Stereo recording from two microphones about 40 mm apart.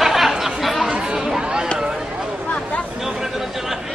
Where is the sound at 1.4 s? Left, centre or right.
Right.